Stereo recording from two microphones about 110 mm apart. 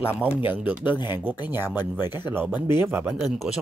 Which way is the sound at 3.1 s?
5° right (ahead or behind).